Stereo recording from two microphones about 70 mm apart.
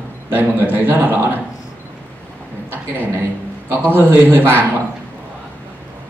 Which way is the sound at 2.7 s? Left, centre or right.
Right.